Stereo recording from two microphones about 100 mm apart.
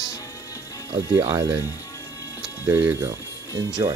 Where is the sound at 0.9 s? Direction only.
30° right (ahead or behind).